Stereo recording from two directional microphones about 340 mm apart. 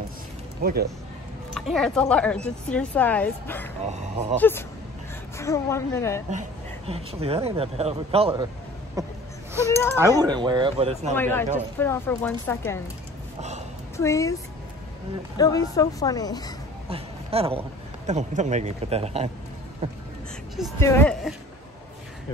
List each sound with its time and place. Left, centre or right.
0.6 s speech: right
1.5 s a woman's voice: centre
3.8 s speech: centre
4.4 s a woman's voice: centre
6.9 s a man's voice: centre
9.7 s a woman's voice: centre
9.9 s a man's voice: centre
11.1 s a woman's voice: centre
13.9 s a woman's voice: centre
15.3 s a woman's voice: centre
16.9 s a man's voice: centre
20.5 s a woman's voice: centre